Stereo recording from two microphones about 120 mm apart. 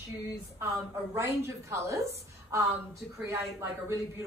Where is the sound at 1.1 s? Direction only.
25° right (ahead or behind).